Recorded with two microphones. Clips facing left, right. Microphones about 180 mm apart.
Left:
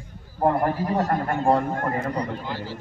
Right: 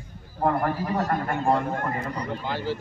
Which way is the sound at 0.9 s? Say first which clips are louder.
Left 2 dB; 35° left (ahead or behind).